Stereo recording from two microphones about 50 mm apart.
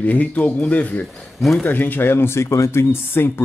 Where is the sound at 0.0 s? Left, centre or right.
Left.